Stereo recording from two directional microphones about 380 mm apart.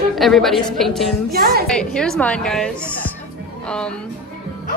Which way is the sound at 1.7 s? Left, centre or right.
Centre.